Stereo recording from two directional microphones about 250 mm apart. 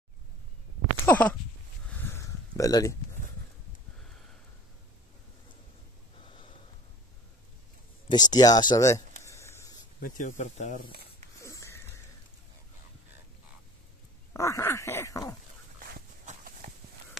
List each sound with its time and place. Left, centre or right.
1.0 s speech: centre
1.9 s a sound: centre
6.1 s snort: left
8.1 s groan: centre
9.2 s a sound: centre
9.9 s speech: left
10.9 s snake: right
11.3 s a sound: centre
14.3 s groan: centre
15.9 s clip-clop: right